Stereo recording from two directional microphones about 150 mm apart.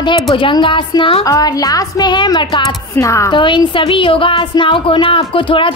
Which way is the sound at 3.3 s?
35° left (ahead or behind).